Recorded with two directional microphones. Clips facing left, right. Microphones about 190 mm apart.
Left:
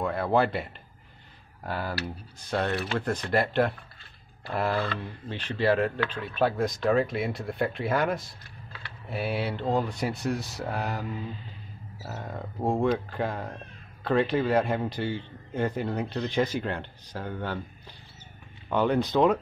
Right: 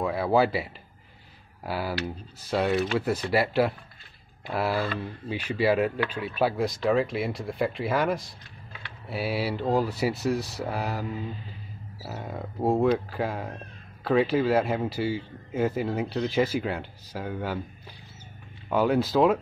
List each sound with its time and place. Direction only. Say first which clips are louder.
0.0 s a man's voice: right 2 dB; 5° right (ahead or behind)
18.7 s a man's voice: right 1 dB; 5° right (ahead or behind)